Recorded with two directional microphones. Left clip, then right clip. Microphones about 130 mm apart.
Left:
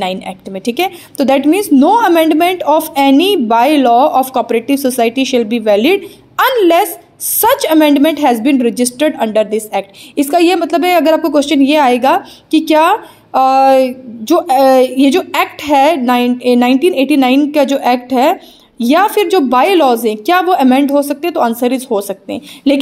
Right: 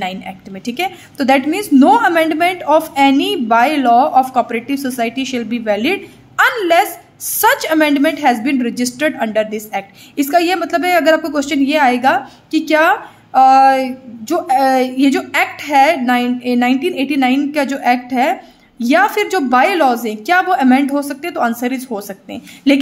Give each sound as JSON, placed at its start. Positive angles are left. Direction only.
{"t": 0.0, "sound": "a woman's voice", "side_deg": 40}